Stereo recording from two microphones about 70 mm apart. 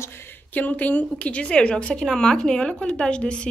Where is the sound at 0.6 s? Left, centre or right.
Left.